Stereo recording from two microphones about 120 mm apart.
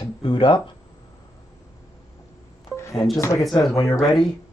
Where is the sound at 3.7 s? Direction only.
25° left (ahead or behind).